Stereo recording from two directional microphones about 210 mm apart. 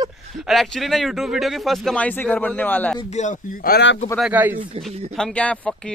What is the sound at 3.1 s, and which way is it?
Speech, 35° left (ahead or behind).